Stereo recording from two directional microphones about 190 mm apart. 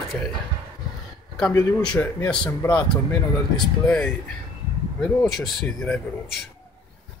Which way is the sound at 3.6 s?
5° left (ahead or behind).